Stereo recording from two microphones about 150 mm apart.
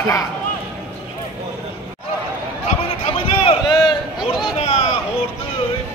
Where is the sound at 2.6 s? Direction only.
45° left (ahead or behind).